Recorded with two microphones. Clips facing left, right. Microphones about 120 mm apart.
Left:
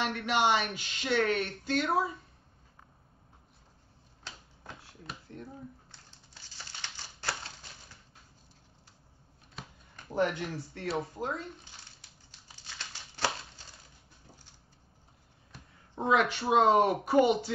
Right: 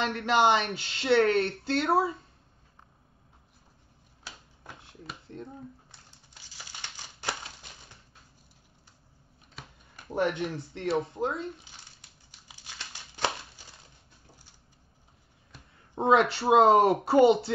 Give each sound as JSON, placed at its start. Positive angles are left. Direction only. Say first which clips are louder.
{"t": 0.0, "sound": "speech", "louder": "right 4 dB", "side_deg": -30}
{"t": 6.4, "sound": "a sound", "louder": "right 1 dB", "side_deg": -10}
{"t": 10.1, "sound": "speech", "louder": "right 2 dB", "side_deg": -20}
{"t": 12.4, "sound": "crumpling", "louder": "right 1 dB", "side_deg": -15}
{"t": 16.0, "sound": "speech", "louder": "right 4 dB", "side_deg": -30}